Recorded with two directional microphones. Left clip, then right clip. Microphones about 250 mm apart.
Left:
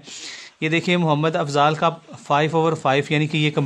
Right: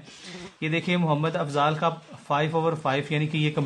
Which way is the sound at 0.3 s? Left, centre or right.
Left.